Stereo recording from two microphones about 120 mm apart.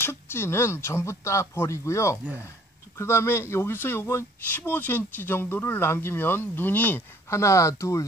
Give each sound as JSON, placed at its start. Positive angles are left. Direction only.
{"t": 0.0, "sound": "speech", "side_deg": 20}